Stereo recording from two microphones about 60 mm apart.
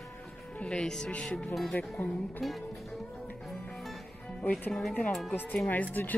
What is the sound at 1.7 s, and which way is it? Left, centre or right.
Speech, left.